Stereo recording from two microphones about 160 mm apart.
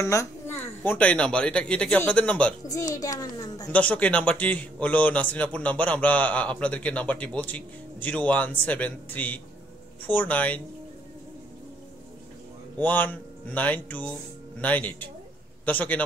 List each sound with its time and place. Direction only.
0.0 s a man's voice: 15° left (ahead or behind)
2.7 s a child's voice: 20° left (ahead or behind)
3.7 s a man's voice: 10° left (ahead or behind)
12.7 s a man's voice: 10° left (ahead or behind)